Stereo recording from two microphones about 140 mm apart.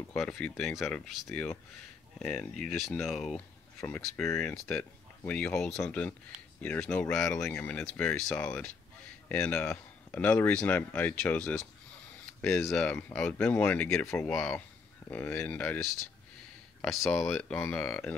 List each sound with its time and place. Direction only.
0.1 s speech: 5° left (ahead or behind)
4.6 s speech: 10° left (ahead or behind)
14.3 s speech: centre (ahead or behind)
15.0 s speech: 15° left (ahead or behind)
16.8 s speech: centre (ahead or behind)